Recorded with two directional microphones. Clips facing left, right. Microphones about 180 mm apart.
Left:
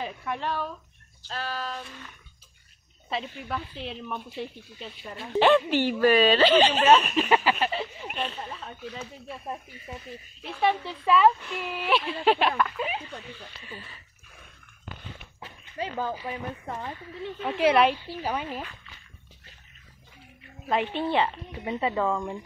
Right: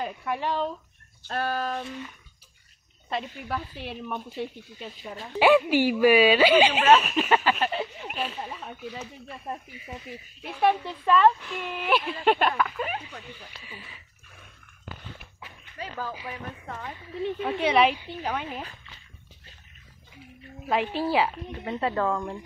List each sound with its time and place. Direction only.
0.0 s speech: centre (ahead or behind)
0.4 s speech: 15° right (ahead or behind)
1.2 s speech: 55° right (ahead or behind)
3.1 s speech: centre (ahead or behind)
15.4 s dog: 30° left (ahead or behind)
16.3 s a woman's voice: 15° left (ahead or behind)
17.2 s speech: 10° right (ahead or behind)
17.6 s a woman's voice: centre (ahead or behind)
20.6 s speech: centre (ahead or behind)